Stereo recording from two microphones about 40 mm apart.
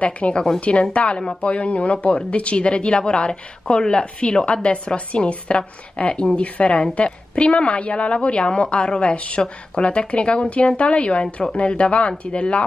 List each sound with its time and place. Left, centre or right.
0.0 s a woman's voice: left
1.1 s a woman's voice: left